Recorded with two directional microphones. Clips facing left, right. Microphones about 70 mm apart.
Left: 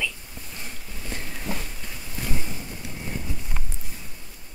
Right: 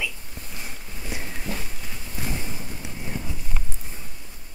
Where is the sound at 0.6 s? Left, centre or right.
Centre.